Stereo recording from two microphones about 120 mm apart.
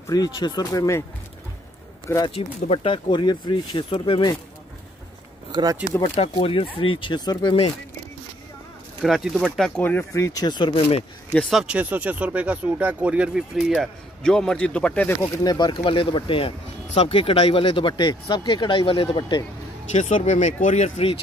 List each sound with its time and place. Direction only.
0.0 s speech: 30° left (ahead or behind)
2.3 s speech: 50° left (ahead or behind)
5.5 s speech: 35° right (ahead or behind)
6.0 s speech: 55° left (ahead or behind); by 7.5 s 35° left (ahead or behind)
9.0 s speech: centre (ahead or behind)
9.8 s speech: 15° left (ahead or behind); by 10.7 s 35° left (ahead or behind)
10.7 s speech: 55° left (ahead or behind)
11.3 s speech: centre (ahead or behind)
15.4 s speech: 40° left (ahead or behind)
15.8 s speech: 50° left (ahead or behind)
19.9 s speech: 85° left; by 21.2 s 65° left (ahead or behind)